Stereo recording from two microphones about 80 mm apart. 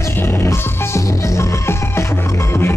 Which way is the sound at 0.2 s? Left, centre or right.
Left.